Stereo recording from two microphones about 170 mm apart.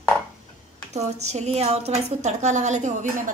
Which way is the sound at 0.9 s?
40° right (ahead or behind).